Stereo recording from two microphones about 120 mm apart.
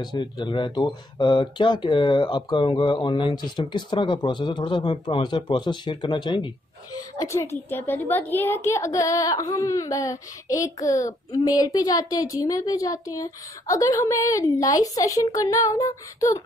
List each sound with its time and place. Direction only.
0.0 s speech: 35° left (ahead or behind)
7.0 s a woman's voice: 25° left (ahead or behind)